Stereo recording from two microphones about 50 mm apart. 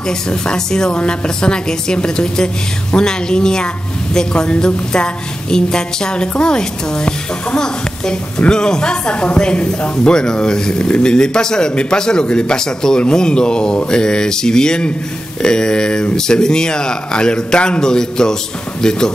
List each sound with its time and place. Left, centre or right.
0.3 s a woman's voice: centre